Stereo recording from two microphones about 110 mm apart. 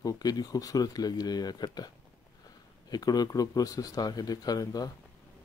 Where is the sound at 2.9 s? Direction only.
35° left (ahead or behind).